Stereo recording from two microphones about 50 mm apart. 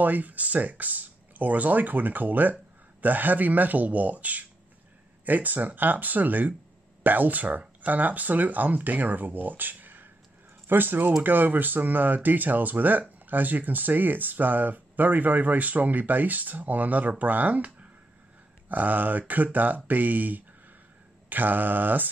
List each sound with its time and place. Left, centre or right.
0.0 s speech: right